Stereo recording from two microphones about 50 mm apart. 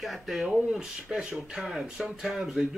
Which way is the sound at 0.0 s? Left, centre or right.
Centre.